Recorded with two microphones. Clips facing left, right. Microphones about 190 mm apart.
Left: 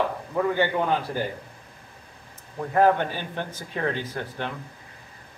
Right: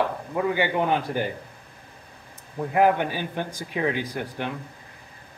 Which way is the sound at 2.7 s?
10° right (ahead or behind).